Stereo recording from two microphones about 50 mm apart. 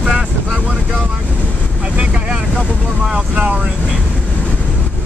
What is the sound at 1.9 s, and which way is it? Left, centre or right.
Vehicle, right.